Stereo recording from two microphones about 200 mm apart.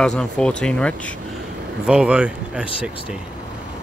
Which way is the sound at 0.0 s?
5° left (ahead or behind).